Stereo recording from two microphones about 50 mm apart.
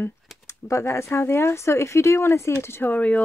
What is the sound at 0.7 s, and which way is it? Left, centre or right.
Speech, left.